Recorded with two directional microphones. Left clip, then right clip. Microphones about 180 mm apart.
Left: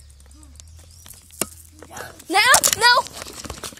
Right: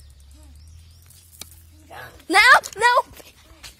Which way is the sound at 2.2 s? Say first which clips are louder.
Right 3 dB; 25° right (ahead or behind).